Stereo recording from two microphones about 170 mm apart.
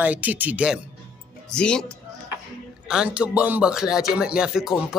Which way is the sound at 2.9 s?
5° right (ahead or behind).